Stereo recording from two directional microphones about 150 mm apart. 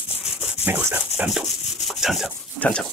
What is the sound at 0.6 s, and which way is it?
Speech, 10° right (ahead or behind).